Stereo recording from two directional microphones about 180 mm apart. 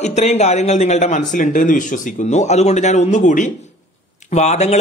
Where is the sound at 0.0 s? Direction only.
40° left (ahead or behind).